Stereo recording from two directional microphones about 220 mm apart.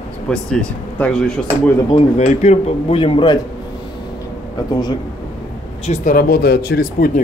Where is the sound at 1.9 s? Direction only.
30° left (ahead or behind).